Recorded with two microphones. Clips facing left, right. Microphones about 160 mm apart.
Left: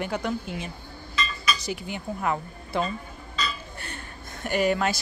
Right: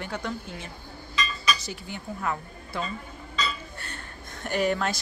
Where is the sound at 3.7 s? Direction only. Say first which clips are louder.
Left 2 dB; 10° left (ahead or behind).